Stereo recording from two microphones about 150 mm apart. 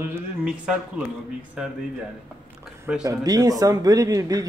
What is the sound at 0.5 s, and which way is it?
Speech, 5° right (ahead or behind).